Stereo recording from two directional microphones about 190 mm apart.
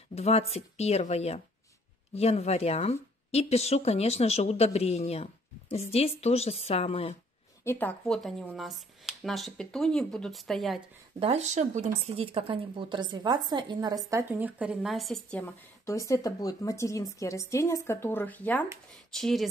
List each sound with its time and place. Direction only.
0.1 s a woman's voice: 35° left (ahead or behind)
7.6 s speech: 5° left (ahead or behind)
11.1 s a woman's voice: 35° right (ahead or behind); by 19.4 s centre (ahead or behind)